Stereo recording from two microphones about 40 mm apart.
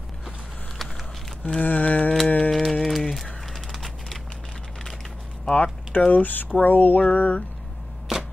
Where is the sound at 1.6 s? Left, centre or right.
Left.